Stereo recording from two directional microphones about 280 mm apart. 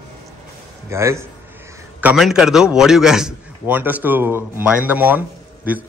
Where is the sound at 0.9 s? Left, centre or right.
Centre.